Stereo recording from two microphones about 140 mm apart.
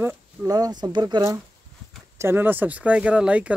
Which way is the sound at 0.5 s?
30° right (ahead or behind).